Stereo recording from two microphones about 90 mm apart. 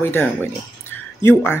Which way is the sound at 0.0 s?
25° left (ahead or behind).